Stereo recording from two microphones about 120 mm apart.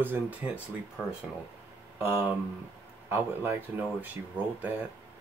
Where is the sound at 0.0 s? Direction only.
15° right (ahead or behind).